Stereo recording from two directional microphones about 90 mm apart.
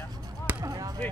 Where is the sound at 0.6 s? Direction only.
40° right (ahead or behind).